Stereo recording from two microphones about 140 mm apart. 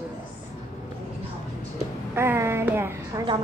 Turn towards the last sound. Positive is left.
turn(degrees=-15)  # may be behind; listen again after turning